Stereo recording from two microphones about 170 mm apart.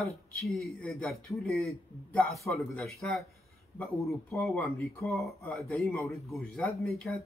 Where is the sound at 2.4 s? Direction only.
15° left (ahead or behind).